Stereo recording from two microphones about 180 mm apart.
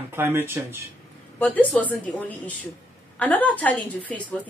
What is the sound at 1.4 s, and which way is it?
A woman's voice, 10° left (ahead or behind).